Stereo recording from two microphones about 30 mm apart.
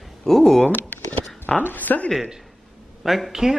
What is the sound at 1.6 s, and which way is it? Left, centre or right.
Speech, left.